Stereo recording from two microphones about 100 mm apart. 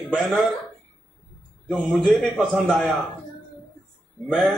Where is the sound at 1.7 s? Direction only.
15° right (ahead or behind).